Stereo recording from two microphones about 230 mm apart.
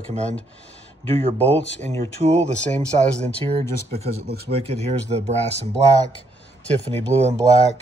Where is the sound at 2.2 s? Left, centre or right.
Right.